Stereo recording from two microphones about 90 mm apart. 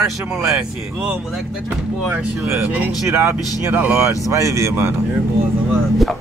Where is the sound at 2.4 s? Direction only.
20° right (ahead or behind).